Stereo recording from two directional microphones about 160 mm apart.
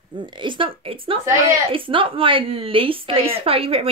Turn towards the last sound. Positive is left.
turn(degrees=-35)  # may be behind; listen again after turning